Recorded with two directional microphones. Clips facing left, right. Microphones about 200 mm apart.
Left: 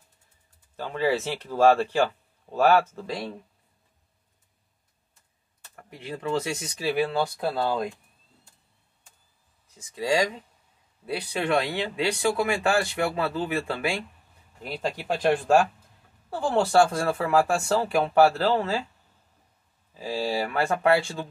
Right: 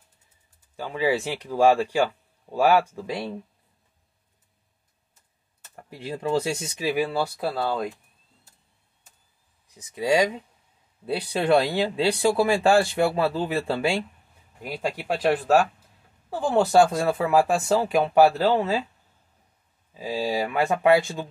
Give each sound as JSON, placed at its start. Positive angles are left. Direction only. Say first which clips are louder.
{"t": 0.7, "sound": "speech", "louder": "right 1 dB", "side_deg": -10}
{"t": 5.8, "sound": "speech", "louder": "right 3 dB", "side_deg": -30}
{"t": 9.8, "sound": "speech", "louder": "right 3 dB", "side_deg": -20}
{"t": 11.1, "sound": "speech", "louder": "right 5 dB", "side_deg": -30}
{"t": 14.6, "sound": "speech", "louder": "right 1 dB", "side_deg": -10}
{"t": 16.3, "sound": "speech", "louder": "right 2 dB", "side_deg": -15}
{"t": 19.9, "sound": "speech", "louder": "right 1 dB", "side_deg": -20}